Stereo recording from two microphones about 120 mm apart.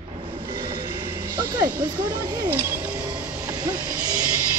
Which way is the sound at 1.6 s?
15° right (ahead or behind).